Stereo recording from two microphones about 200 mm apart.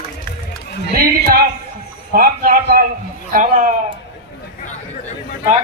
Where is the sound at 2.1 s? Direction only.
45° right (ahead or behind).